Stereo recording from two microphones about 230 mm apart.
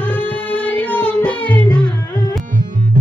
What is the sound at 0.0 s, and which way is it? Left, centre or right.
Music, centre.